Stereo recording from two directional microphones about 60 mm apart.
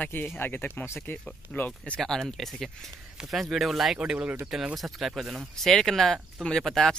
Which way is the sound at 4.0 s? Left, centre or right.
Centre.